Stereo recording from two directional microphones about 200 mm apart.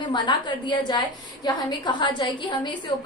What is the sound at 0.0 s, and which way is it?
A woman's voice, 20° left (ahead or behind).